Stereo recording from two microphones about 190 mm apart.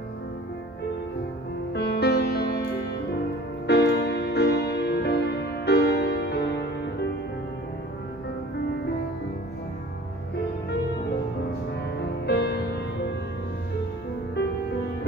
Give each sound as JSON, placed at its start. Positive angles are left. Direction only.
{"t": 1.7, "sound": "music", "side_deg": 60}
{"t": 12.3, "sound": "music", "side_deg": 60}